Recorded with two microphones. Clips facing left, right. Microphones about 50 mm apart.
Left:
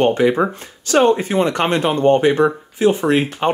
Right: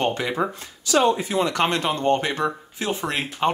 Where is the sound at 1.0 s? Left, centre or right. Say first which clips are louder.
Left 6 dB; left.